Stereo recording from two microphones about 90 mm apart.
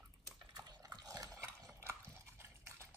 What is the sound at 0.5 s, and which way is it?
Dog, 40° right (ahead or behind).